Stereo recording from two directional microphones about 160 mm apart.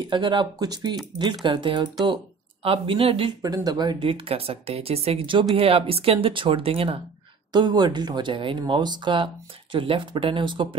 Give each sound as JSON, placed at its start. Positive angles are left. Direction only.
{"t": 0.1, "sound": "speech", "side_deg": -30}